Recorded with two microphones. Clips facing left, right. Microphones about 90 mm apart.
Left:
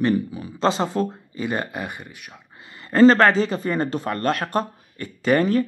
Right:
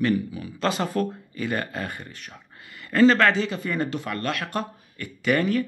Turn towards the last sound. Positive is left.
turn(degrees=35)  # may be behind; listen again after turning